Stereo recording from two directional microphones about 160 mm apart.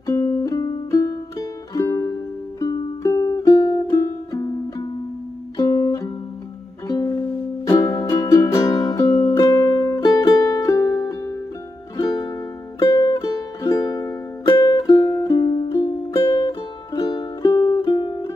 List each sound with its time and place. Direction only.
0.0 s music: 20° left (ahead or behind)